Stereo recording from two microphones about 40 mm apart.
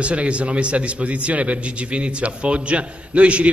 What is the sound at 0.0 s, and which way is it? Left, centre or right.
A man's voice, right.